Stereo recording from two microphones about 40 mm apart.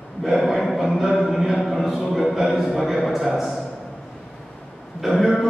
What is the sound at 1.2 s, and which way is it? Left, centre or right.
Speech, centre.